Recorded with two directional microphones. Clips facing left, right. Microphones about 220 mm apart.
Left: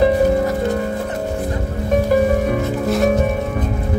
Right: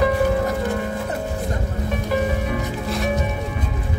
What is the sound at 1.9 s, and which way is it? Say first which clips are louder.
Music: left 8 dB; 45° left (ahead or behind).